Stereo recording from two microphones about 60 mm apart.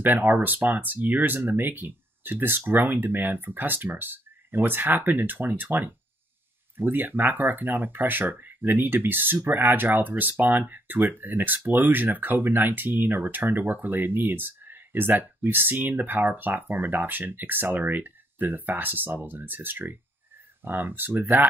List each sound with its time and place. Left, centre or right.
0.0 s speech: right